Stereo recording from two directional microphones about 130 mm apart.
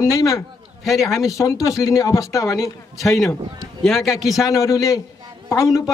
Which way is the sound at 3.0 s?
Centre (ahead or behind).